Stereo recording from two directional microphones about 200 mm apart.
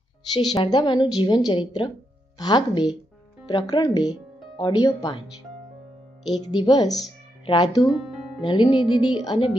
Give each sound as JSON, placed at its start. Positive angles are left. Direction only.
{"t": 0.3, "sound": "a woman's voice", "side_deg": 20}
{"t": 6.5, "sound": "a woman's voice", "side_deg": 25}